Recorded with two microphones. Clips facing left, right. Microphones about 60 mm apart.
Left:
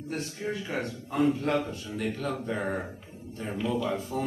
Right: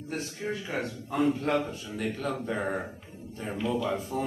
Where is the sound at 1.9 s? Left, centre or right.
Centre.